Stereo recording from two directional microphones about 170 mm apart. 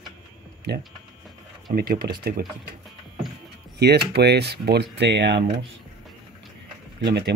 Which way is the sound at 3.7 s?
70° right (ahead or behind).